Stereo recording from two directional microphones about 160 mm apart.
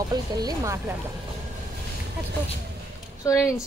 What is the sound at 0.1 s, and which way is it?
Speech, 25° right (ahead or behind).